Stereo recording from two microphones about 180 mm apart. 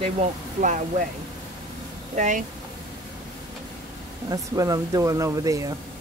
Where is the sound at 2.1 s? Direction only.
45° right (ahead or behind).